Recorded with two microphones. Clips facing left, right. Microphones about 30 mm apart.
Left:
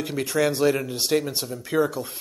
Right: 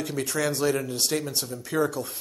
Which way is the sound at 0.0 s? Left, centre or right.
Centre.